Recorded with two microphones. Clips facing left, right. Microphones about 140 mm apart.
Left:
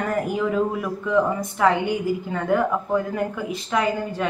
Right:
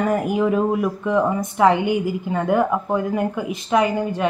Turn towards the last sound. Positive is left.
turn(degrees=-20)  # may be behind; listen again after turning